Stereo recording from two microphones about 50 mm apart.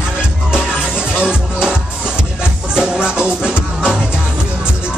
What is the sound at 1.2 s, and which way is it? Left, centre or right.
Music, centre.